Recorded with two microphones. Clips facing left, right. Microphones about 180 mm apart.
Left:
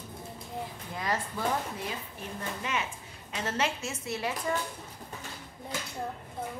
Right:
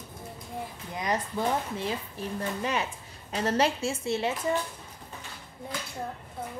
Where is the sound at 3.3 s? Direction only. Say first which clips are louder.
Right 6 dB; 35° right (ahead or behind).